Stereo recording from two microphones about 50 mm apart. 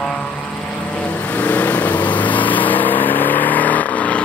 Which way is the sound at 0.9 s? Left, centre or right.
Left.